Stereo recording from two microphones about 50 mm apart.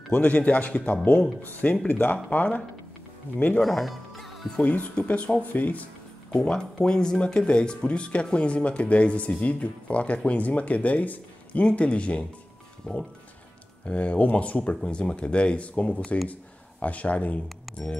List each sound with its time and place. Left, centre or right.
0.1 s speech: left
3.6 s music: centre
4.6 s speech: left
6.3 s speech: centre
13.8 s speech: left